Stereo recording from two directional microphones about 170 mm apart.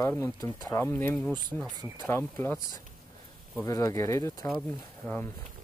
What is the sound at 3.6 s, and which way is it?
Speech, 20° left (ahead or behind).